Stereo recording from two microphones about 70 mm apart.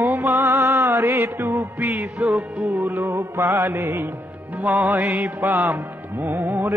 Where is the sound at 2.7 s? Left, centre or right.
Right.